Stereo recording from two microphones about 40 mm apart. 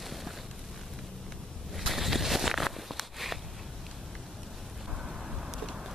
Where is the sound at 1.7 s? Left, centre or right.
Centre.